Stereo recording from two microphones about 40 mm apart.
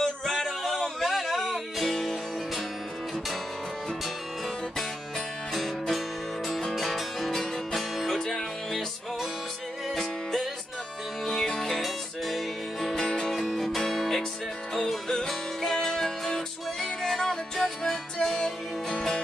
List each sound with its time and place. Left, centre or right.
0.0 s a sound: centre
1.0 s music: centre
5.5 s music: centre
9.9 s music: centre
12.9 s music: centre